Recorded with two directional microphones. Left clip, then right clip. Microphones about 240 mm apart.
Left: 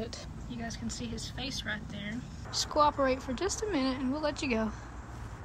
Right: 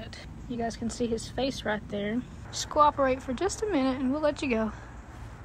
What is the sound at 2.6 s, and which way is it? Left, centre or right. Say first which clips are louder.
Speech: right 4 dB; centre.